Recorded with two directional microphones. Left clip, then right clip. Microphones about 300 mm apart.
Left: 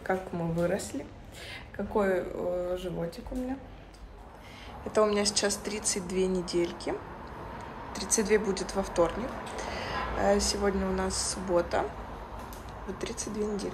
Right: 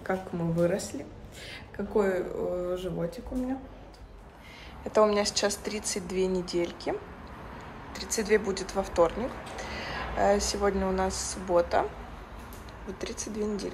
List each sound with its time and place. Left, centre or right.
0.0 s speech: centre
2.0 s speech: centre
4.9 s speech: centre
7.9 s speech: centre
12.8 s speech: centre